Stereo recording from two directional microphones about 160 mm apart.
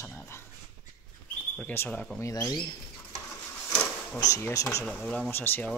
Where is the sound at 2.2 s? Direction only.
20° left (ahead or behind).